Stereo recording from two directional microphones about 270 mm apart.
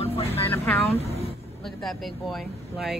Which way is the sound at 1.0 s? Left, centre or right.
Left.